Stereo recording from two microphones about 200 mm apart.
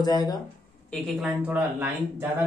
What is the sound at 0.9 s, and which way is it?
A man's voice, centre (ahead or behind).